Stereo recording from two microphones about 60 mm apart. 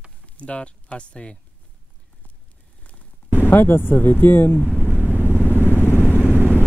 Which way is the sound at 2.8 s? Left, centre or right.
Left.